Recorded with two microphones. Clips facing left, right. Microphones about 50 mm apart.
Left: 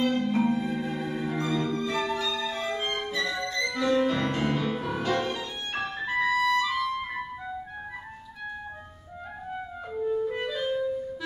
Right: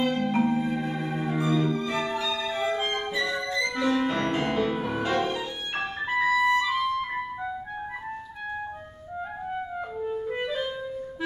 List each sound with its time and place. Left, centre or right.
0.0 s music: centre
10.2 s clarinet: centre